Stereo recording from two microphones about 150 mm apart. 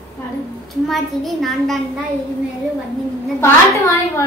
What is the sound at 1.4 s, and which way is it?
Speech, centre (ahead or behind).